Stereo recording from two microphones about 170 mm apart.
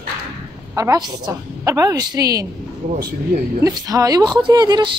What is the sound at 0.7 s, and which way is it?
A woman's voice, 20° right (ahead or behind).